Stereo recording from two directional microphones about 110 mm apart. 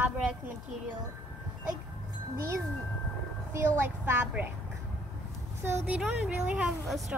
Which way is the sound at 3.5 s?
25° right (ahead or behind).